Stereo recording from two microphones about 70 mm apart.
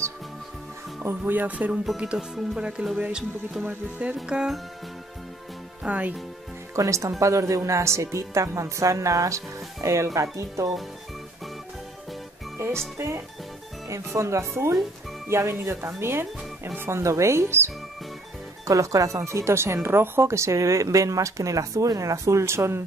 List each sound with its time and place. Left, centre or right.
1.0 s speech: right; by 4.6 s centre
5.9 s speech: centre
6.7 s speech: right
12.9 s speech: right
18.7 s speech: right